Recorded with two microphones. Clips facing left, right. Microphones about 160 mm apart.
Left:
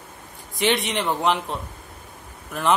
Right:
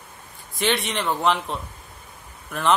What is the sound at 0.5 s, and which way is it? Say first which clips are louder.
Speech: left 2 dB; 15° left (ahead or behind).